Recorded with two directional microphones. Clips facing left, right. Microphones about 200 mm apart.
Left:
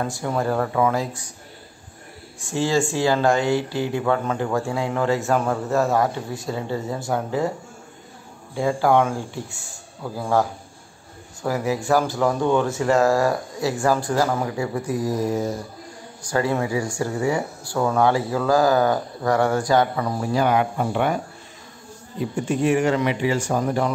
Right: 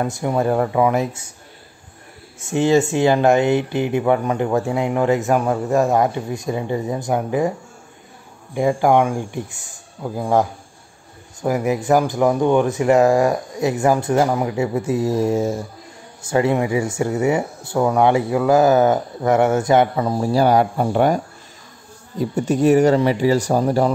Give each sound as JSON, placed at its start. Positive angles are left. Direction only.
{"t": 0.0, "sound": "speech", "side_deg": -20}
{"t": 2.4, "sound": "speech", "side_deg": -20}
{"t": 8.5, "sound": "speech", "side_deg": -15}
{"t": 11.4, "sound": "speech", "side_deg": -15}
{"t": 22.2, "sound": "speech", "side_deg": -40}